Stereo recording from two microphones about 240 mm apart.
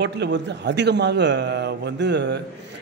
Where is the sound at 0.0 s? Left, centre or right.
Right.